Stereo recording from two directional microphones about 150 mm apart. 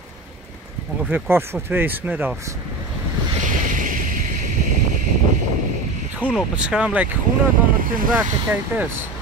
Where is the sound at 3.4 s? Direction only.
60° right (ahead or behind).